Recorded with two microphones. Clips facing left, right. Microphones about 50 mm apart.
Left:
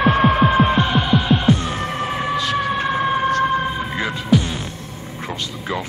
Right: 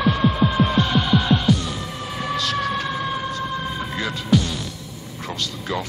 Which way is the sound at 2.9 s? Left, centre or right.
Left.